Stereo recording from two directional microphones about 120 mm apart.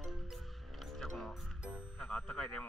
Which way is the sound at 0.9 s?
Centre (ahead or behind).